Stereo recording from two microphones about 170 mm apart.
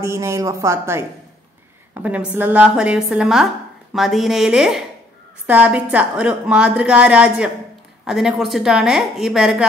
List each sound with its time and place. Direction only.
0.0 s a woman's voice: 15° right (ahead or behind)